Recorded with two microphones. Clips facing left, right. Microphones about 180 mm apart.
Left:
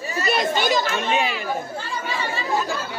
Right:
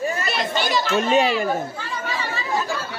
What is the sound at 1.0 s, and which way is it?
Speech, 40° right (ahead or behind).